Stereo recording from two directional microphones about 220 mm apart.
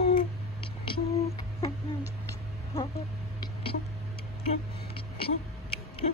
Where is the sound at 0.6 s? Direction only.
25° left (ahead or behind).